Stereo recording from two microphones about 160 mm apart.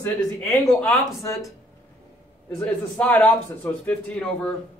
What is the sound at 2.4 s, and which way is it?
A man's voice, 10° left (ahead or behind).